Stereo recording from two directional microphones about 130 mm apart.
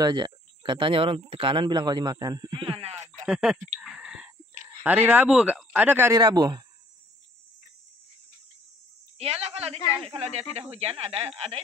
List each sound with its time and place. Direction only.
0.0 s speech: 35° right (ahead or behind)
3.1 s a sound: 5° right (ahead or behind)
4.8 s speech: 10° right (ahead or behind)
6.1 s speech: 35° right (ahead or behind)
9.2 s speech: 55° right (ahead or behind)